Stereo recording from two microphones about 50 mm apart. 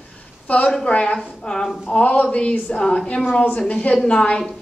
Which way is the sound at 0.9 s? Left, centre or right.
Left.